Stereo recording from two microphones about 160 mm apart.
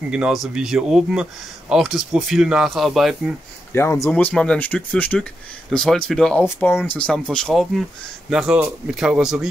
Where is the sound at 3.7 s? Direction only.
15° left (ahead or behind).